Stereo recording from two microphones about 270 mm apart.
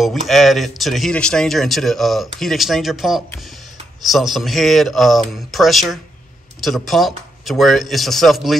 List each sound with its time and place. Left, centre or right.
0.0 s a man's voice: centre